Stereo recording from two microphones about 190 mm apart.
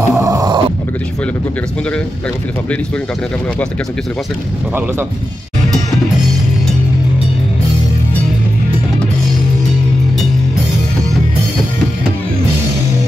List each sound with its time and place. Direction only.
0.0 s grunt: 15° right (ahead or behind)